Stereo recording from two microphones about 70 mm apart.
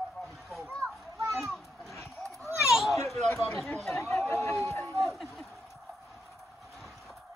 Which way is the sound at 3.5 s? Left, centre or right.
Centre.